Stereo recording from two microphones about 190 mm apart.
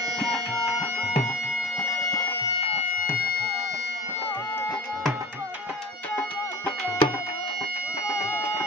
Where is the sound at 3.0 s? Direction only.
50° left (ahead or behind).